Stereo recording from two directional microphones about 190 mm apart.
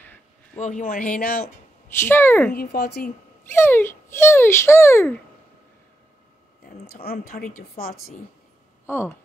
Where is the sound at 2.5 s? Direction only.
55° left (ahead or behind).